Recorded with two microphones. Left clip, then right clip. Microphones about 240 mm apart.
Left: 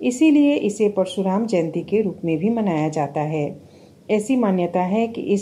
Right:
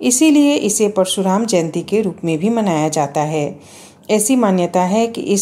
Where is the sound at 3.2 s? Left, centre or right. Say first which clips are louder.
Right 5 dB; right.